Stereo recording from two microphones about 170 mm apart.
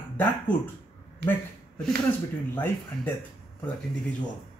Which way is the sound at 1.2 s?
85° right.